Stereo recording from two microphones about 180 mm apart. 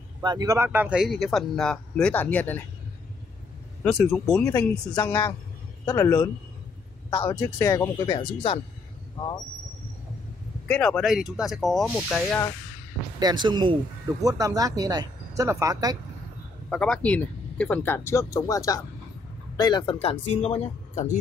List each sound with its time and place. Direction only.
0.2 s speech: 20° right (ahead or behind); by 2.6 s 10° left (ahead or behind)
3.8 s speech: 10° left (ahead or behind)
7.1 s speech: 30° left (ahead or behind)
7.5 s speech: 15° left (ahead or behind)
10.7 s speech: 5° left (ahead or behind)
13.2 s speech: 25° right (ahead or behind)
16.6 s speech: 5° left (ahead or behind); by 21.2 s 40° left (ahead or behind)